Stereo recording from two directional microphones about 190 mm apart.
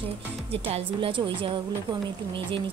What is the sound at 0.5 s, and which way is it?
A woman's voice, 30° right (ahead or behind).